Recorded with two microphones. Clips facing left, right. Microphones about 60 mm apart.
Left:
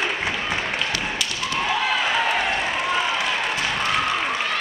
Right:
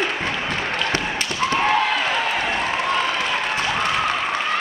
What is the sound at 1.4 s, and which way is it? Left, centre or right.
Basketball bounce, right.